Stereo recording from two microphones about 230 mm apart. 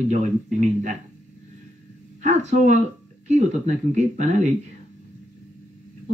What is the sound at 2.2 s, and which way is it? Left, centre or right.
Speech, right.